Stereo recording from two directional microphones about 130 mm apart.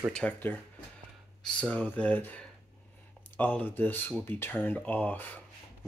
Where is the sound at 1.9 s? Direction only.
10° left (ahead or behind).